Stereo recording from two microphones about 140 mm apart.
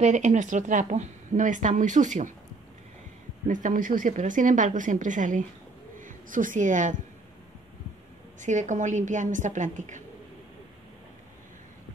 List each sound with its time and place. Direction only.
0.0 s a woman's voice: 60° right (ahead or behind)
3.4 s a woman's voice: 70° right (ahead or behind)
8.4 s a woman's voice: 60° right (ahead or behind)